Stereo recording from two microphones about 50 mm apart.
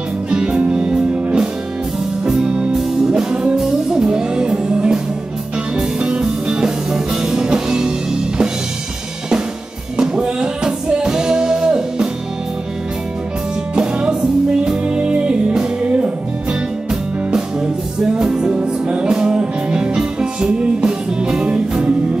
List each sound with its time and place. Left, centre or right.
0.3 s music: right
9.9 s music: centre
13.7 s music: centre
18.0 s music: centre